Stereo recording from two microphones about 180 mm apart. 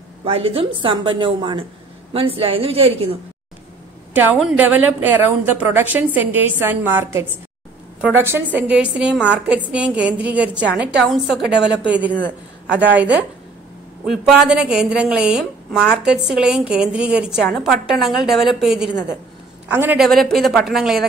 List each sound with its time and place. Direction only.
0.2 s a woman's voice: 35° right (ahead or behind)
4.1 s a woman's voice: 10° right (ahead or behind)
20.1 s a woman's voice: centre (ahead or behind)